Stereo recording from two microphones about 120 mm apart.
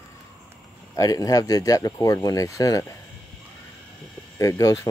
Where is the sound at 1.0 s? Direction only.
30° left (ahead or behind).